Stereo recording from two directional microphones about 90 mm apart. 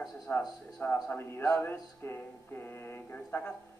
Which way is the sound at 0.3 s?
25° left (ahead or behind).